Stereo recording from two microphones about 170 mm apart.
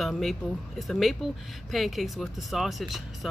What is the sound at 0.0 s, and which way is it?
Speech, centre (ahead or behind).